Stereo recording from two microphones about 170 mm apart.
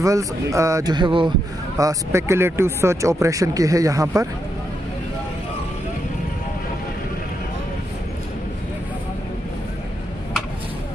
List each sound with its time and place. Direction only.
0.0 s speech: 20° right (ahead or behind)
1.8 s speech: 20° right (ahead or behind)